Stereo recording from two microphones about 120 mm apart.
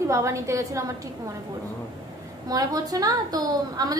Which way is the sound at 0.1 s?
25° right (ahead or behind).